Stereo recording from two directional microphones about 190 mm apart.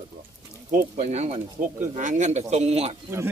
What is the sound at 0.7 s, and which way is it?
Speech, 40° right (ahead or behind).